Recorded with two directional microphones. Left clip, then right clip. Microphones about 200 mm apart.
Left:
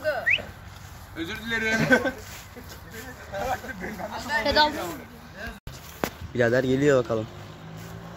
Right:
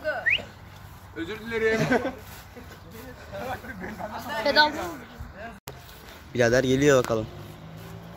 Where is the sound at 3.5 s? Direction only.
45° left (ahead or behind).